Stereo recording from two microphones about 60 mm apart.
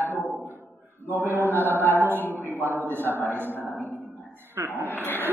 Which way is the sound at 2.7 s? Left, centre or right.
Right.